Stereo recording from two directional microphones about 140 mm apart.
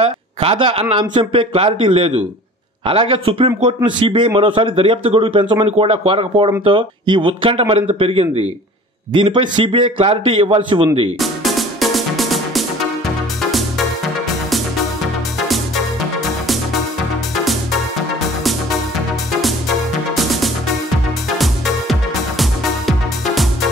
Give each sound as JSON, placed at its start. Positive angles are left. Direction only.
{"t": 0.0, "sound": "a man's voice", "side_deg": -45}
{"t": 11.1, "sound": "music", "side_deg": 0}
{"t": 15.3, "sound": "music", "side_deg": 0}
{"t": 22.4, "sound": "music", "side_deg": 0}